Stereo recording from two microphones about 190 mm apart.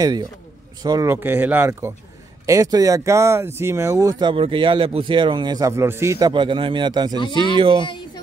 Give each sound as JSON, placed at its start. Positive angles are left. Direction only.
{"t": 0.0, "sound": "speech", "side_deg": -20}
{"t": 7.2, "sound": "speech", "side_deg": 25}
{"t": 7.5, "sound": "speech", "side_deg": -25}